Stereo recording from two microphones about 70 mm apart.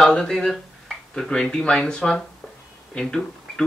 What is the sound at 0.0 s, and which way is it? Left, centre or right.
Speech, centre.